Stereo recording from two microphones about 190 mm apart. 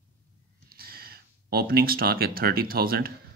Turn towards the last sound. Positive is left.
turn(degrees=-50)  # may be behind; listen again after turning